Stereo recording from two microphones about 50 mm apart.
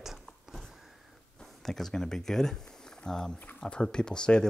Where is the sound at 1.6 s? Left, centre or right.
Centre.